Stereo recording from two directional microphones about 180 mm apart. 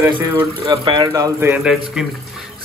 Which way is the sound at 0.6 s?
25° right (ahead or behind).